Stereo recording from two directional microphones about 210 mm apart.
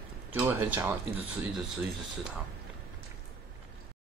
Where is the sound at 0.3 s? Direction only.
10° right (ahead or behind).